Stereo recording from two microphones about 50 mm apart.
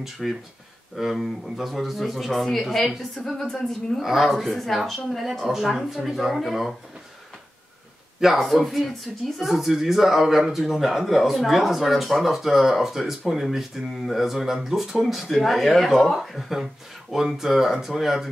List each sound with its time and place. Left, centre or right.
0.0 s a woman's voice: centre
8.2 s speech: centre